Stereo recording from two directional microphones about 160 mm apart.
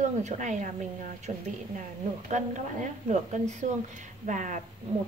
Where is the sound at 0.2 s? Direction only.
45° right (ahead or behind).